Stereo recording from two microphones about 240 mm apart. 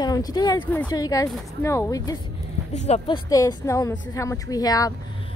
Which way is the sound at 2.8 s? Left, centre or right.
Left.